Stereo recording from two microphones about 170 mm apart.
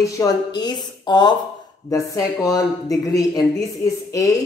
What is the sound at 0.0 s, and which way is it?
A woman's voice, 20° left (ahead or behind).